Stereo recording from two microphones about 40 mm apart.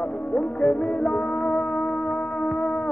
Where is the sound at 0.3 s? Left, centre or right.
Left.